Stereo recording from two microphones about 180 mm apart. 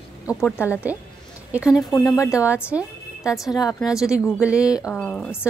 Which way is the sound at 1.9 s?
15° left (ahead or behind).